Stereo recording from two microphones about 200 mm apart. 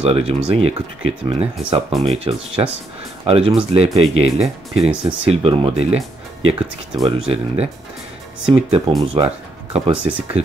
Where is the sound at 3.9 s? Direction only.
30° right (ahead or behind).